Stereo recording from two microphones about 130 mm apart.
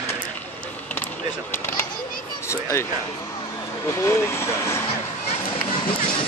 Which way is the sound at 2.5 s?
20° left (ahead or behind).